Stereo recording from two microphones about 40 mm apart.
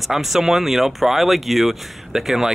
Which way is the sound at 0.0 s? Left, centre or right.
Centre.